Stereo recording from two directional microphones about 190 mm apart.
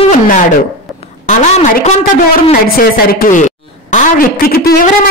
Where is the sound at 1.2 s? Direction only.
40° left (ahead or behind).